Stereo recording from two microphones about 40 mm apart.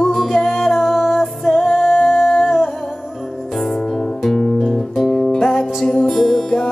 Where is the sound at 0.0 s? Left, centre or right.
Centre.